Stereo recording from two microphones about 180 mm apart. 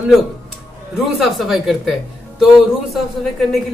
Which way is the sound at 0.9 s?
Centre (ahead or behind).